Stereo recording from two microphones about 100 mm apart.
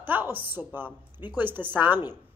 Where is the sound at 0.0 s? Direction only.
20° right (ahead or behind).